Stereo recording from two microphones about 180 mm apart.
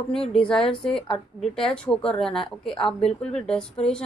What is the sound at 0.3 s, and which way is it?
A woman's voice, 5° left (ahead or behind).